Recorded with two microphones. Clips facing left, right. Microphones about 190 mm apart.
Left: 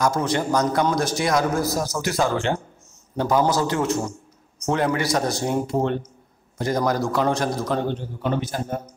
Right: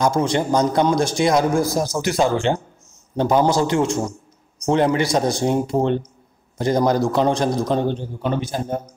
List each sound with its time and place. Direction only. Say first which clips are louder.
0.2 s a man's voice: right 3 dB; 20° right (ahead or behind)